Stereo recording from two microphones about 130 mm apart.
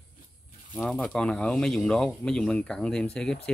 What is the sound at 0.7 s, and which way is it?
Speech, 5° left (ahead or behind).